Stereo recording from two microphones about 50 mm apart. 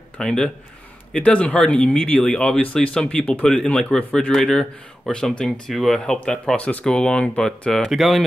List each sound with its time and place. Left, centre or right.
0.2 s speech: centre
1.1 s speech: left
6.5 s speech: left; by 7.9 s centre
7.9 s speech: centre